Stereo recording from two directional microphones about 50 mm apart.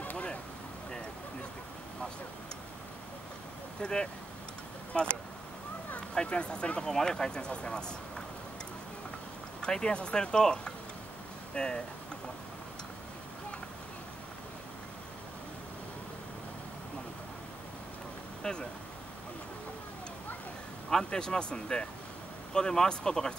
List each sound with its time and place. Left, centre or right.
0.0 s a sound: left
3.8 s speech: centre
5.9 s speech: left
9.6 s speech: centre
18.4 s speech: centre
20.9 s speech: centre